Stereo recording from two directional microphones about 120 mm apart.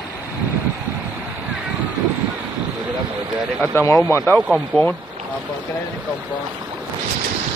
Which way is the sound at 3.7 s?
20° left (ahead or behind).